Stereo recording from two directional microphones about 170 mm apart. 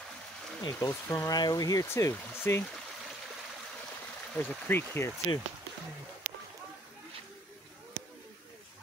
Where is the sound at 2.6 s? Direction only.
Centre (ahead or behind).